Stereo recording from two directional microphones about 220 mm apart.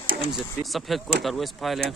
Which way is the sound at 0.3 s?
Centre (ahead or behind).